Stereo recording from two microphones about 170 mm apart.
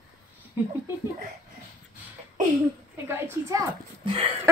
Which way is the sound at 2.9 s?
15° right (ahead or behind).